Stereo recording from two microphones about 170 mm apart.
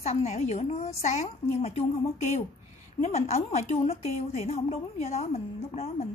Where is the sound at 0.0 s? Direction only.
40° left (ahead or behind).